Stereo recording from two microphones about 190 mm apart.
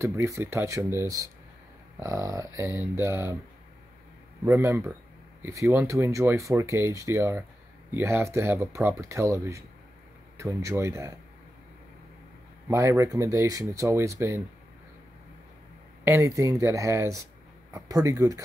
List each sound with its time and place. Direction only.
0.0 s speech: 15° right (ahead or behind)
4.5 s speech: 15° right (ahead or behind)
12.6 s speech: 15° right (ahead or behind)
16.0 s speech: 15° right (ahead or behind)